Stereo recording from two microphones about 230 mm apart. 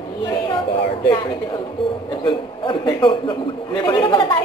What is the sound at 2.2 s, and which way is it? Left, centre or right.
A woman's voice, left.